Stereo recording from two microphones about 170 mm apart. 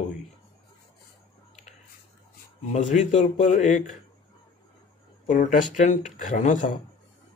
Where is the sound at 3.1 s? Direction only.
45° left (ahead or behind).